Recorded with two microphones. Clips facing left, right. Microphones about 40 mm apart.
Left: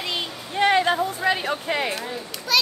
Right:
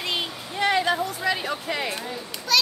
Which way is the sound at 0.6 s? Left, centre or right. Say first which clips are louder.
Left 3 dB; left.